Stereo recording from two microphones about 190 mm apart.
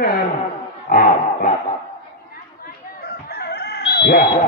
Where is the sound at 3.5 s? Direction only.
55° left (ahead or behind).